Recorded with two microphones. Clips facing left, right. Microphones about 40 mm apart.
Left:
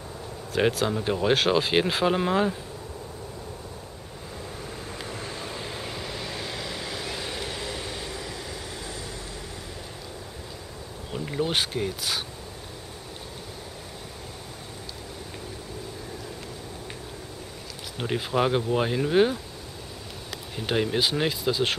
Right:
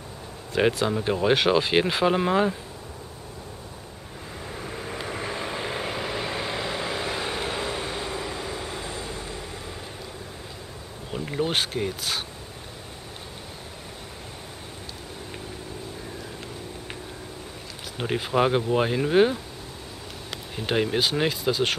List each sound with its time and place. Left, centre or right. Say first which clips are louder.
0.6 s speech: right 1 dB; centre
4.6 s vehicle: right 7 dB; right
11.1 s speech: right 1 dB; centre
17.9 s speech: right 2 dB; centre
20.5 s speech: right 1 dB; centre